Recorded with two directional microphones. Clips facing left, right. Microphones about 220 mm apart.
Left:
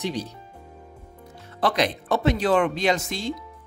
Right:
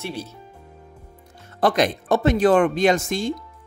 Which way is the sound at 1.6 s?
45° right (ahead or behind).